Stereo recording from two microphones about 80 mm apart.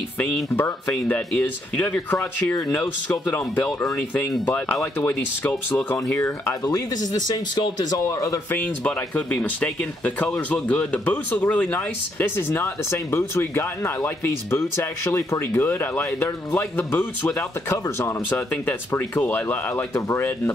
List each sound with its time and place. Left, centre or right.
0.8 s speech: centre
1.9 s speech: left
6.7 s speech: left
8.1 s speech: left
8.5 s speech: centre
12.4 s speech: left